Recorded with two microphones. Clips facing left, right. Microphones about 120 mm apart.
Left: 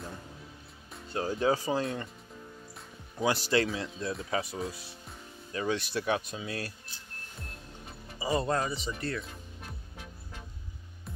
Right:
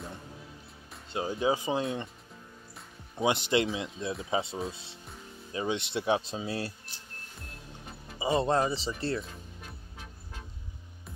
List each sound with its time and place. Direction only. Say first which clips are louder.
1.1 s speech: left 1 dB; 15° right (ahead or behind)
3.2 s speech: right 1 dB; 20° right (ahead or behind)
8.2 s speech: right 3 dB; 25° right (ahead or behind)